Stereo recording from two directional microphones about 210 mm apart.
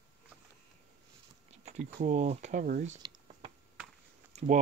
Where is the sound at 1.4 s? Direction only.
35° right (ahead or behind).